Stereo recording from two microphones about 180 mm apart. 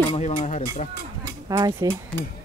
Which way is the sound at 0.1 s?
40° left (ahead or behind).